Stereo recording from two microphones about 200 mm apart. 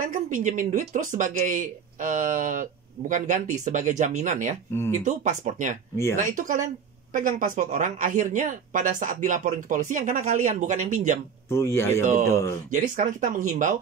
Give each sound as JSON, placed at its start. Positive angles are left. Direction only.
{"t": 0.0, "sound": "speech", "side_deg": -40}
{"t": 11.4, "sound": "speech", "side_deg": 15}
{"t": 12.7, "sound": "speech", "side_deg": -40}